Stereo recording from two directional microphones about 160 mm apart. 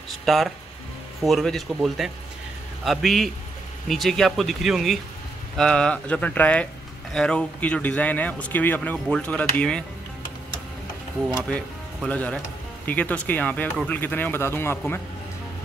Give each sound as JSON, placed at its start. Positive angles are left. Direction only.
{"t": 0.2, "sound": "a man's voice", "side_deg": 0}
{"t": 11.4, "sound": "a man's voice", "side_deg": 5}